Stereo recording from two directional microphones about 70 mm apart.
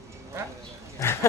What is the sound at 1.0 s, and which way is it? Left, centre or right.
Dog, left.